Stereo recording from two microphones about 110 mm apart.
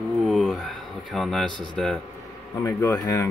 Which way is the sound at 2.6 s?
25° left (ahead or behind).